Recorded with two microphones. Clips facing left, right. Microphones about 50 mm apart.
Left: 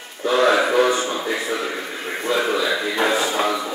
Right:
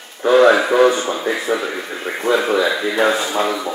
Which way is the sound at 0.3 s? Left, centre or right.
Centre.